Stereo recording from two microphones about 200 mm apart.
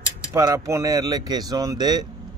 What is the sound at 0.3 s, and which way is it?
Speech, 15° right (ahead or behind).